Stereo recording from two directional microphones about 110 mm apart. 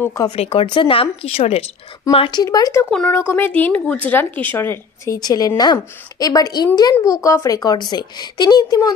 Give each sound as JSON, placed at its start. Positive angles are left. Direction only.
{"t": 0.4, "sound": "speech", "side_deg": 70}
{"t": 0.7, "sound": "speech", "side_deg": 50}
{"t": 2.1, "sound": "speech", "side_deg": 55}
{"t": 2.4, "sound": "a woman's voice", "side_deg": 35}
{"t": 2.9, "sound": "speech", "side_deg": 5}
{"t": 3.2, "sound": "a woman's voice", "side_deg": 20}